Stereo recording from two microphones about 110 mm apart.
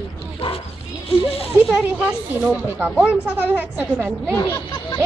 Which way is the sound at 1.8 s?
10° right (ahead or behind).